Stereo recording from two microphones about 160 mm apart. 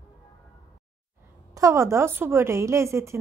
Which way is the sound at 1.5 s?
20° right (ahead or behind).